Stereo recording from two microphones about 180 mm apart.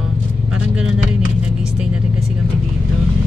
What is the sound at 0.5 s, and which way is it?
Vehicle, 5° right (ahead or behind).